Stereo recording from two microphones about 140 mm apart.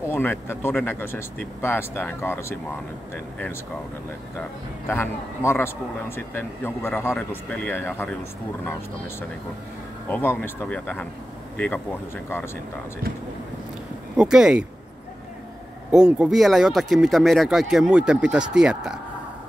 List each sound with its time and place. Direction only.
0.1 s speech: 15° left (ahead or behind)
4.4 s speech: 15° left (ahead or behind)
10.0 s speech: 15° left (ahead or behind)
14.1 s speech: 5° right (ahead or behind)
15.9 s speech: 5° right (ahead or behind)